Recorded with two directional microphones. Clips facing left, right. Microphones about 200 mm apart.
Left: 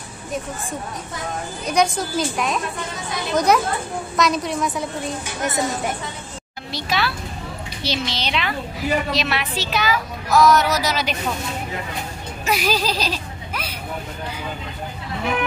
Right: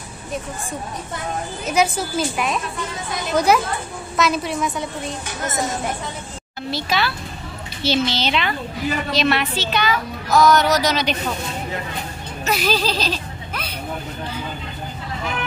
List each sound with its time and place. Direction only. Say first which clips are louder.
1.7 s a woman's voice: even; 5° right (ahead or behind)
6.7 s a woman's voice: right 1 dB; centre (ahead or behind)
12.4 s speech: right 1 dB; 5° left (ahead or behind)